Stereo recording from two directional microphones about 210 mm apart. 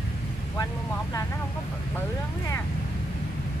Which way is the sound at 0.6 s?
15° left (ahead or behind).